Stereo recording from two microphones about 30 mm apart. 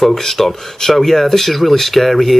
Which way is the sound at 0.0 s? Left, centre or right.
Centre.